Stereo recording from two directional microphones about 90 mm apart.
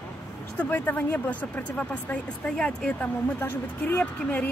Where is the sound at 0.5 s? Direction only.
20° left (ahead or behind).